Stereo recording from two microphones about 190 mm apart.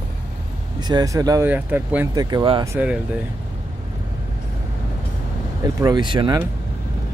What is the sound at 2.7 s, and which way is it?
Speech, 5° right (ahead or behind).